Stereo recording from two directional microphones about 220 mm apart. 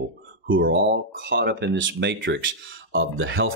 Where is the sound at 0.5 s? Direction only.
60° right (ahead or behind).